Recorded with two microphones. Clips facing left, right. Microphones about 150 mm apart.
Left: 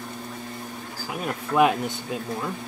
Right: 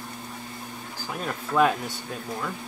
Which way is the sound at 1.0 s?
10° left (ahead or behind).